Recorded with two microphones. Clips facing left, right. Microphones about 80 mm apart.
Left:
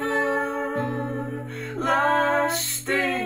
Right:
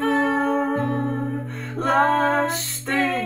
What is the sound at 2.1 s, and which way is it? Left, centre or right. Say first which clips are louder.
Female singing: right 1 dB; centre.